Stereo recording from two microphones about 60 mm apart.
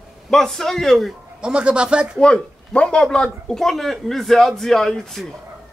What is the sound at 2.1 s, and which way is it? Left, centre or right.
A man's voice, centre.